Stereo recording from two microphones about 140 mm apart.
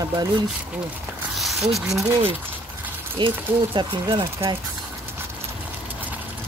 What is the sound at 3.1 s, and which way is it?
Speech, 35° right (ahead or behind).